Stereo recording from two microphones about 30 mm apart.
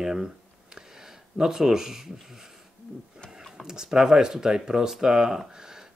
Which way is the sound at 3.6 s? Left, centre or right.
Centre.